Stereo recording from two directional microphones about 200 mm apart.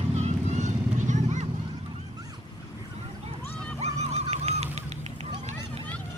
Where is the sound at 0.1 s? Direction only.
35° right (ahead or behind).